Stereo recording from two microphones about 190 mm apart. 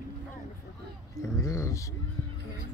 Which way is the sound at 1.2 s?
15° left (ahead or behind).